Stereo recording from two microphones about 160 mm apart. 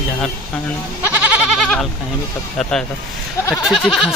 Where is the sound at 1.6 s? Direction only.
Centre (ahead or behind).